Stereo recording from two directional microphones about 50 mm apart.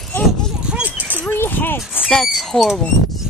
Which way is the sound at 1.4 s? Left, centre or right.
Left.